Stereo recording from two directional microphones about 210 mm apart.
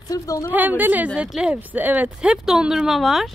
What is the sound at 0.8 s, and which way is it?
A woman's voice, 10° right (ahead or behind).